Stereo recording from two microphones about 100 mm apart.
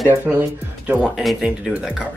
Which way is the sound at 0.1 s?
20° right (ahead or behind).